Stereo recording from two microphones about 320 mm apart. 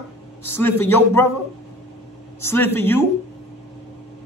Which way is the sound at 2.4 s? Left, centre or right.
Centre.